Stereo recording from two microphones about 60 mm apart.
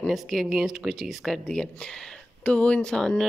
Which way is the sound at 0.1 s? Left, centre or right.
Centre.